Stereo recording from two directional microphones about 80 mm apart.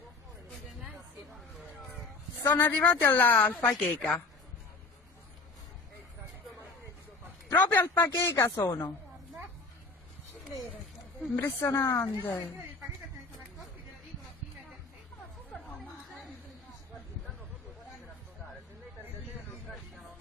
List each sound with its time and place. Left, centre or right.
2.5 s speech: left
3.5 s a woman's voice: centre
7.5 s a sound: left
8.1 s speech: left
11.4 s a woman's voice: left
12.0 s speech: left